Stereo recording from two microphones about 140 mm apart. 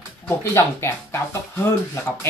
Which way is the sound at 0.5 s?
15° left (ahead or behind).